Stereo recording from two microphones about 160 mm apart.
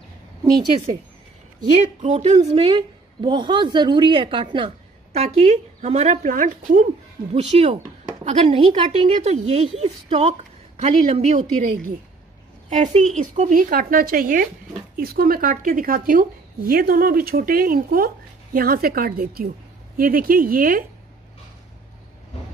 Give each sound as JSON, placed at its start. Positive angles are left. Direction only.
{"t": 1.8, "sound": "a woman's voice", "side_deg": -50}
{"t": 7.3, "sound": "a woman's voice", "side_deg": -45}